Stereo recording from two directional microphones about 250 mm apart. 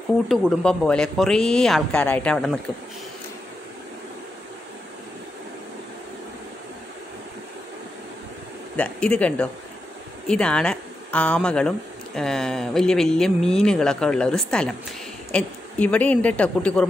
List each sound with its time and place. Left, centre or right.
0.3 s speech: centre
8.7 s speech: centre